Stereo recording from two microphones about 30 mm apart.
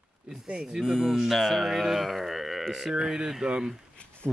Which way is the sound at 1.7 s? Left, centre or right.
Centre.